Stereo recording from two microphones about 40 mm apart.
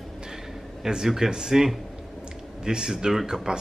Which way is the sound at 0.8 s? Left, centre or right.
Centre.